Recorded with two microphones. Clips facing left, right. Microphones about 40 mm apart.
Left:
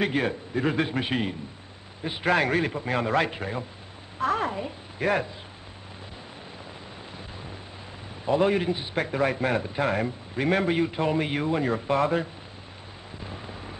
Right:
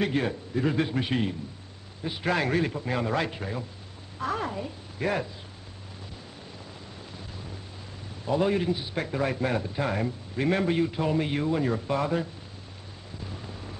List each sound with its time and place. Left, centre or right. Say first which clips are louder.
0.0 s speech: left 1 dB; centre
4.2 s a sound: left 4 dB; centre
4.6 s a woman's voice: left 2 dB; left
8.3 s speech: left 2 dB; centre
13.2 s vehicle: left 2 dB; left